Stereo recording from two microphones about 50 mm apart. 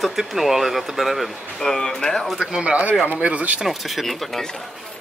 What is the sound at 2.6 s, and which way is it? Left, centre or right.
Speech, right.